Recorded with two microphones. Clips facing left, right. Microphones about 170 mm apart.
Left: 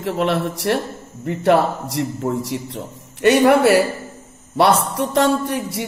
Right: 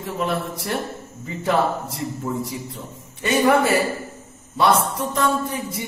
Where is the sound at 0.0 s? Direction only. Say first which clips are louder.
Left 5 dB; 90° left.